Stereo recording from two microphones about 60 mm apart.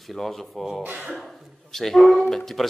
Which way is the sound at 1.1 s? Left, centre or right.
Centre.